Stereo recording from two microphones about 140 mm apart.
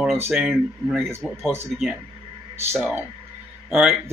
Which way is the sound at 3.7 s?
5° right (ahead or behind).